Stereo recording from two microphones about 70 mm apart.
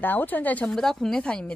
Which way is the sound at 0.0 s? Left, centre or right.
Left.